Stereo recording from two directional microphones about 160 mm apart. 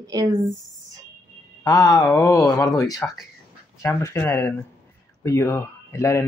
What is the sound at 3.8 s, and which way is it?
Speech, 15° left (ahead or behind).